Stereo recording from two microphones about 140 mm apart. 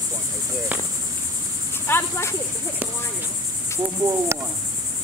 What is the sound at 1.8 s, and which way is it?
Cricket, 15° left (ahead or behind).